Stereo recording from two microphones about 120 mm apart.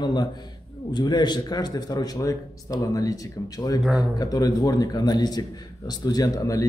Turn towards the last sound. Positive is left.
turn(degrees=30)  # may be behind; listen again after turning